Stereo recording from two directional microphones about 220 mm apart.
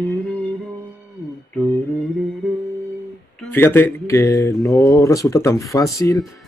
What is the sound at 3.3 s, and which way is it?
Speech, 10° left (ahead or behind).